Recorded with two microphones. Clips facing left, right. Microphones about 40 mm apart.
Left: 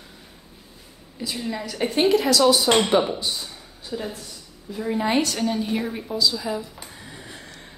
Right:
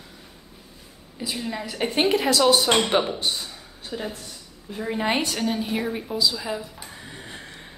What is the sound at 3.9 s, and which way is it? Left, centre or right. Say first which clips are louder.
A woman's voice: left 1 dB; right.